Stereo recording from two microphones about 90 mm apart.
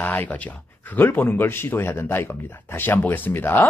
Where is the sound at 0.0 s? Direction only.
20° left (ahead or behind).